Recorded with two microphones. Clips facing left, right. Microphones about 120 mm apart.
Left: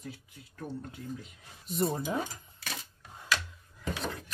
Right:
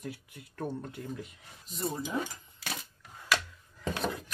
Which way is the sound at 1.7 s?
55° left (ahead or behind).